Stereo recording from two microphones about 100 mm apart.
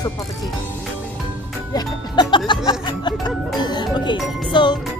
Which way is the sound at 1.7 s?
45° left (ahead or behind).